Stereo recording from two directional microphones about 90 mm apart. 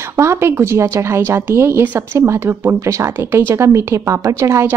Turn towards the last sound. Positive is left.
turn(degrees=-30)  # may be behind; listen again after turning